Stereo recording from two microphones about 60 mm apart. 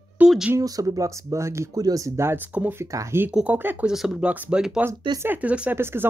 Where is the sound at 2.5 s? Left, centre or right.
Right.